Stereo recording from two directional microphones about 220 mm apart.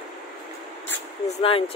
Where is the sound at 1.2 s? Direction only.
25° left (ahead or behind).